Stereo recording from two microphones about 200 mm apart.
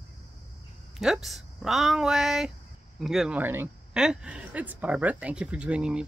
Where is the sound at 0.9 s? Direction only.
Centre (ahead or behind).